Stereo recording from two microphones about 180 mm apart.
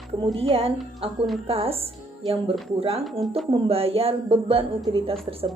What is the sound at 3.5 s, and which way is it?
A woman's voice, 35° right (ahead or behind).